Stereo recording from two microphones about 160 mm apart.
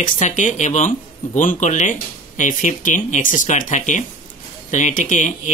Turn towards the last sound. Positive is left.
turn(degrees=50)  # may be behind; listen again after turning